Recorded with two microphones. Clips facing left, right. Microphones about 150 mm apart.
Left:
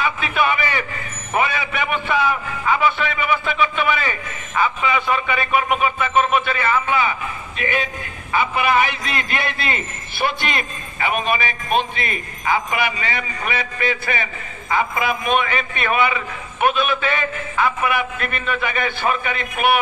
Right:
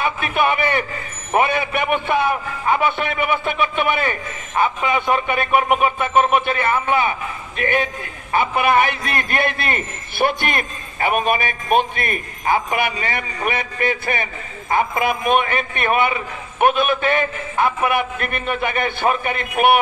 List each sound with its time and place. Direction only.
0.4 s speech: 55° right (ahead or behind)